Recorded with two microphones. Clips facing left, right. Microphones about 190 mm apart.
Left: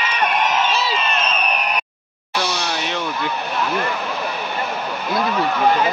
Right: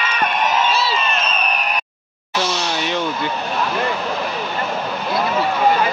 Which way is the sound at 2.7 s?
Centre (ahead or behind).